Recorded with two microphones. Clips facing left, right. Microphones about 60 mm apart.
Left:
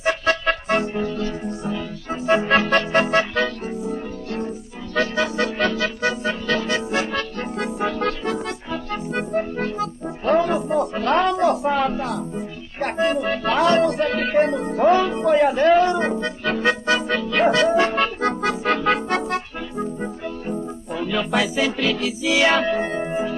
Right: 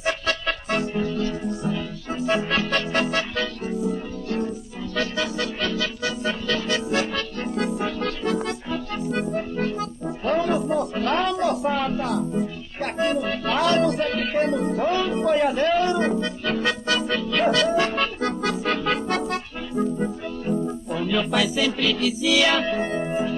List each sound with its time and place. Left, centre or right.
0.0 s music: left